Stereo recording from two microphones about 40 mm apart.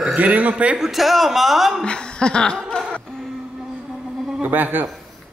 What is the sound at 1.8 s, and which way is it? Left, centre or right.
Chuckle, left.